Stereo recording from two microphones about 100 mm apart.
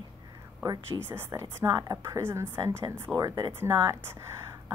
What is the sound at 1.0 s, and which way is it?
A woman's voice, 25° right (ahead or behind).